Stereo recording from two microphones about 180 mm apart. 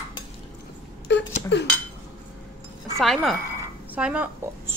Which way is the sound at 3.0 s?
Centre (ahead or behind).